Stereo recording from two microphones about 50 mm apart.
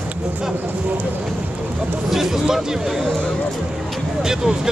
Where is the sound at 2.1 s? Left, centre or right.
Centre.